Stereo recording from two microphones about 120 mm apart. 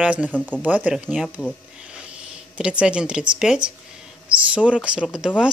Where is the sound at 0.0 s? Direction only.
10° right (ahead or behind).